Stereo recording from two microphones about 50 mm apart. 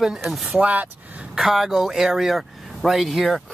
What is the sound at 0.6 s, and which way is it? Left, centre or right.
Speech, right.